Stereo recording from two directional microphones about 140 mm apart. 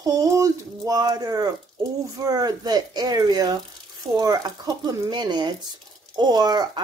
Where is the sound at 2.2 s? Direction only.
30° right (ahead or behind).